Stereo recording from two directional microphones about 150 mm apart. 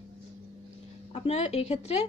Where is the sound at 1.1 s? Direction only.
45° left (ahead or behind).